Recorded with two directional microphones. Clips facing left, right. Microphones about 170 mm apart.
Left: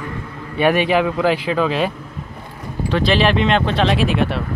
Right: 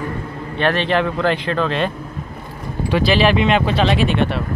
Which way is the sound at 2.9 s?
5° right (ahead or behind).